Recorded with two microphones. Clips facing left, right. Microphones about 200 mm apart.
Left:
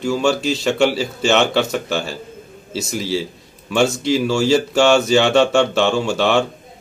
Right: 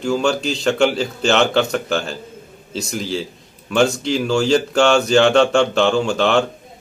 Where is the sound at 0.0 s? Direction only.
5° left (ahead or behind).